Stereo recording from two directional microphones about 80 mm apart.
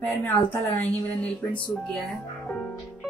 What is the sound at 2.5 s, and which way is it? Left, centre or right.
Music, centre.